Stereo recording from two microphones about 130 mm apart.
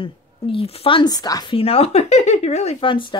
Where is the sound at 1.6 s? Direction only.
50° left (ahead or behind).